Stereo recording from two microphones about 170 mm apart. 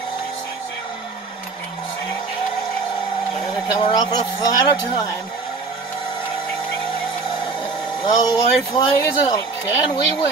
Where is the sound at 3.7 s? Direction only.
25° left (ahead or behind).